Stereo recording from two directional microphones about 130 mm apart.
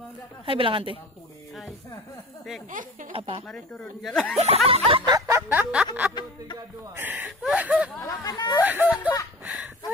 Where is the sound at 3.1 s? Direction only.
45° right (ahead or behind).